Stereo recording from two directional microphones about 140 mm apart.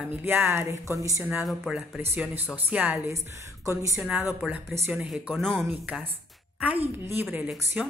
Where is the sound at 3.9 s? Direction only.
10° right (ahead or behind).